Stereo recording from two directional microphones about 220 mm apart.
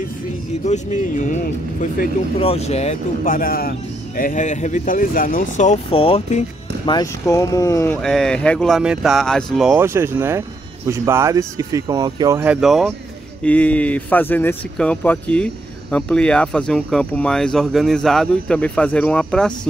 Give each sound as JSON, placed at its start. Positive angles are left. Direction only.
{"t": 0.7, "sound": "speech", "side_deg": 35}